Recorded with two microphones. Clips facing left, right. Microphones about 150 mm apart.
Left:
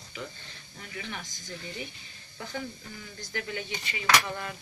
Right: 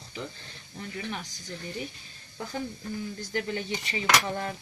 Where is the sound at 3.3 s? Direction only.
35° right (ahead or behind).